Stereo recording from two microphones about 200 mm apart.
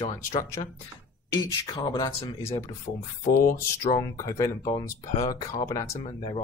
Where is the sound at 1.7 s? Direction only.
20° left (ahead or behind).